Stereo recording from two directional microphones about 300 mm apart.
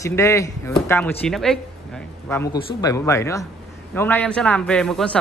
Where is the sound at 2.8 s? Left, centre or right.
Centre.